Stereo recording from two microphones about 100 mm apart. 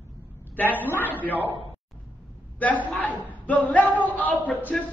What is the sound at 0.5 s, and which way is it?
Speech, 20° left (ahead or behind).